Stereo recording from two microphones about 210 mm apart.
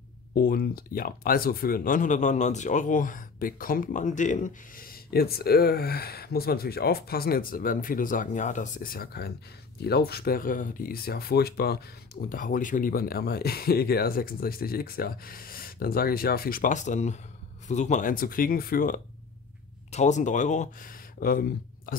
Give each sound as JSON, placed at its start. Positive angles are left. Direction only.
{"t": 0.4, "sound": "speech", "side_deg": 45}
{"t": 19.9, "sound": "speech", "side_deg": 35}